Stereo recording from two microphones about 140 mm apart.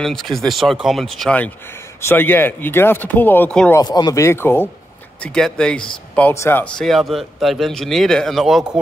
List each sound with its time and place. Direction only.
0.0 s speech: 5° left (ahead or behind)
2.0 s speech: 15° left (ahead or behind)
3.7 s speech: 30° left (ahead or behind)
5.2 s speech: 5° left (ahead or behind)
6.3 s speech: 20° left (ahead or behind)
6.6 s speech: 5° left (ahead or behind)